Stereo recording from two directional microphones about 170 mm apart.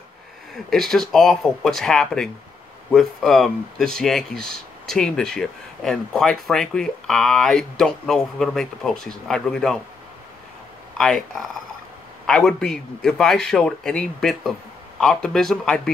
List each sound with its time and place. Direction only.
0.7 s speech: centre (ahead or behind)
11.0 s speech: centre (ahead or behind)